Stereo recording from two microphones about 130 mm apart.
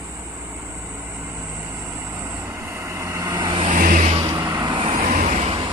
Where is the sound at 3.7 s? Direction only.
85° right.